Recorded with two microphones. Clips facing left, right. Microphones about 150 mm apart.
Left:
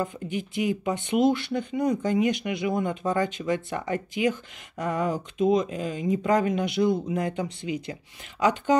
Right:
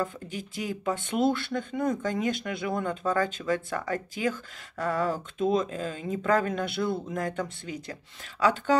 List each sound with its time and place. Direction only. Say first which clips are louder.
0.0 s speech: left 3 dB; 20° left (ahead or behind)